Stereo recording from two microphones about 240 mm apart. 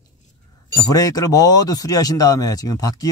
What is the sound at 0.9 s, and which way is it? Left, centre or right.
Speech, centre.